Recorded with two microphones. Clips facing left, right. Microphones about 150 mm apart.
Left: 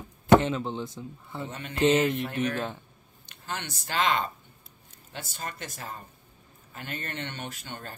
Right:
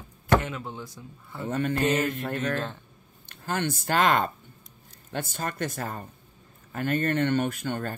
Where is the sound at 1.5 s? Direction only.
50° right (ahead or behind).